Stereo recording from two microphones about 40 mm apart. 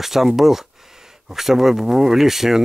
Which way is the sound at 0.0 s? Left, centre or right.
Centre.